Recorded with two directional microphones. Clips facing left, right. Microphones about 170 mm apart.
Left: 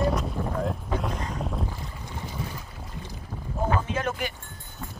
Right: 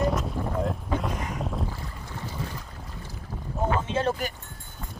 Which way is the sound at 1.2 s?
Centre (ahead or behind).